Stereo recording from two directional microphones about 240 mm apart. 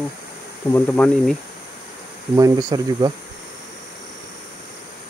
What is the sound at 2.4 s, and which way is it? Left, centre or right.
Speech, centre.